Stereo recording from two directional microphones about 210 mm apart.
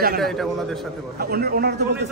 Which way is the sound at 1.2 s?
45° right (ahead or behind).